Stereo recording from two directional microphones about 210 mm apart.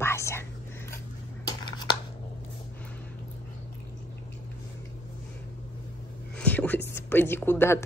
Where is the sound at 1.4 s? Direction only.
20° left (ahead or behind).